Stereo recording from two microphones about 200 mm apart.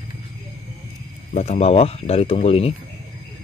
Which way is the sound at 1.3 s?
35° left (ahead or behind).